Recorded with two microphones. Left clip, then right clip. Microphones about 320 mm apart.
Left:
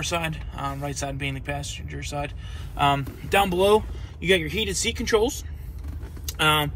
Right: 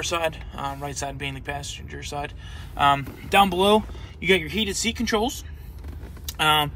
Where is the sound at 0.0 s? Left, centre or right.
Centre.